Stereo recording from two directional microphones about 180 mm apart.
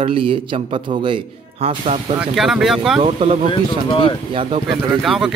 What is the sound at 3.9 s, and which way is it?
Speech, 25° left (ahead or behind).